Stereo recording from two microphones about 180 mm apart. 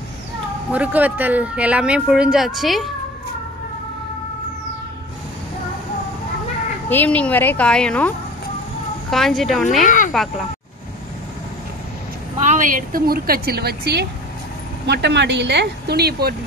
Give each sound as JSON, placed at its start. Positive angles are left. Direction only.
{"t": 0.7, "sound": "speech", "side_deg": -10}
{"t": 6.9, "sound": "a woman's voice", "side_deg": 10}
{"t": 9.1, "sound": "speech", "side_deg": 0}
{"t": 9.8, "sound": "speech", "side_deg": 45}
{"t": 10.1, "sound": "speech", "side_deg": 0}
{"t": 12.4, "sound": "a woman's voice", "side_deg": -45}